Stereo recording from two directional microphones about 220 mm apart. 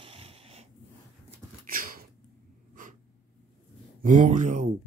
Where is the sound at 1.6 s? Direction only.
40° right (ahead or behind).